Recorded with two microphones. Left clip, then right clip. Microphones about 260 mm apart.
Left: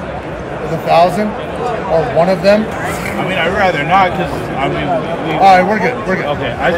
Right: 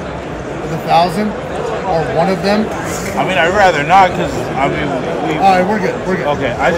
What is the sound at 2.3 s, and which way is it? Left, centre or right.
Speech, centre.